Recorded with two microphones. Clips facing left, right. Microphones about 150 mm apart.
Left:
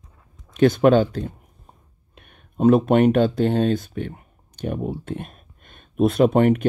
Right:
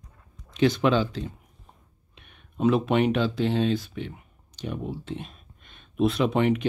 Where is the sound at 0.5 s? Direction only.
50° left (ahead or behind).